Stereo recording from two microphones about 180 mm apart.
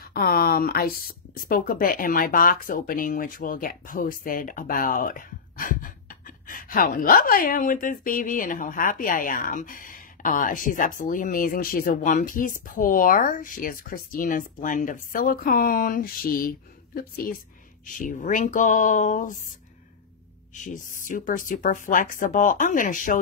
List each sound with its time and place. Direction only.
0.0 s speech: 55° left (ahead or behind)
20.5 s speech: 45° left (ahead or behind)